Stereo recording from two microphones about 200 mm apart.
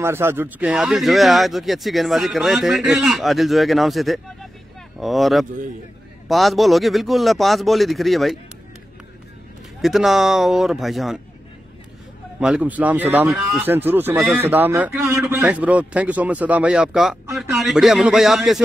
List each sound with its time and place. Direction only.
0.0 s speech: 10° right (ahead or behind)
9.8 s speech: centre (ahead or behind)
12.4 s speech: 5° right (ahead or behind)